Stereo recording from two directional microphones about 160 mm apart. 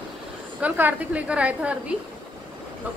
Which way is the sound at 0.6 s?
10° right (ahead or behind).